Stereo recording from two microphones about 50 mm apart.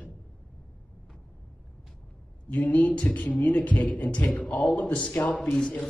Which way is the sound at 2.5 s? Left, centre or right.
Left.